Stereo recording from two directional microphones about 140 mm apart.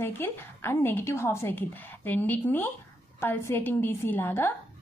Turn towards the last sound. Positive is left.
turn(degrees=15)  # may be behind; listen again after turning